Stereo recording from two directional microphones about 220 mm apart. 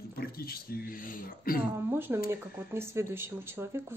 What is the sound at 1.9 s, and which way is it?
Speech, 10° right (ahead or behind).